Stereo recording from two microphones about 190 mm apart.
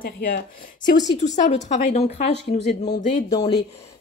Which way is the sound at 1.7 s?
35° left (ahead or behind).